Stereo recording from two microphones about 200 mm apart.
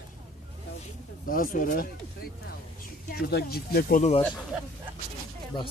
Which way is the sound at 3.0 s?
50° left (ahead or behind).